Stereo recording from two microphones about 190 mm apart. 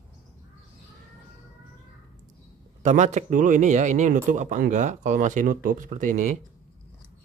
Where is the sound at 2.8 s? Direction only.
40° right (ahead or behind).